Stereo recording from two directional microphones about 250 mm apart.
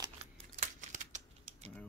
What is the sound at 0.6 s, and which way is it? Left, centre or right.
Crumpling, right.